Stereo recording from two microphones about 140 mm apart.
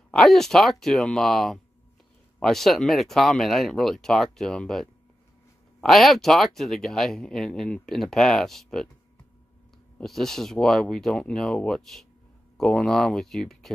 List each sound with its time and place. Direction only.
0.1 s speech: 5° left (ahead or behind)
9.9 s speech: centre (ahead or behind)